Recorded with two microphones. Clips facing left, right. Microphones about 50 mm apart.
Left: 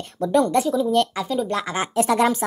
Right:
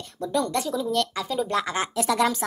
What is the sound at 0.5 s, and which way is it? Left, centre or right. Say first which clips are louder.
Speech: left 6 dB; centre.